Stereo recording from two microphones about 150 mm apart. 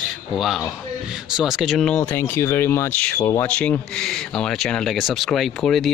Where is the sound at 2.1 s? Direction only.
15° left (ahead or behind).